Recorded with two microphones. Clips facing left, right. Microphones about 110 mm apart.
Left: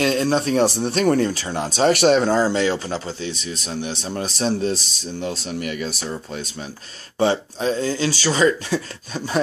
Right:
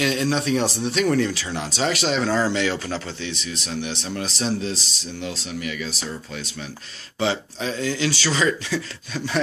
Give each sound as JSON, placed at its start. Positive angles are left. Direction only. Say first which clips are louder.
{"t": 0.0, "sound": "speech", "louder": "left 3 dB", "side_deg": 40}
{"t": 2.0, "sound": "speech", "louder": "left 8 dB", "side_deg": 55}
{"t": 2.5, "sound": "speech", "louder": "left 3 dB", "side_deg": 35}
{"t": 7.2, "sound": "speech", "louder": "left 5 dB", "side_deg": 40}